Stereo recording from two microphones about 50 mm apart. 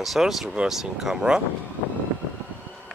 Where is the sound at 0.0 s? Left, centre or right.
Centre.